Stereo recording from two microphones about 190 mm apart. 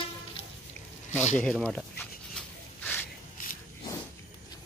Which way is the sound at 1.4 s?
5° left (ahead or behind).